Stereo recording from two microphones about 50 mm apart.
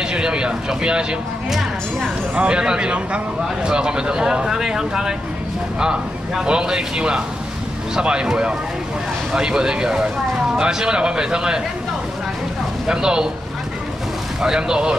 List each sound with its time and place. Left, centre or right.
0.1 s speech: centre
1.5 s music: centre
2.3 s speech: right
12.8 s speech: centre
14.4 s speech: centre